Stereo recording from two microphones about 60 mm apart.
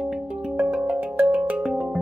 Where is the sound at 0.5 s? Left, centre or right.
Centre.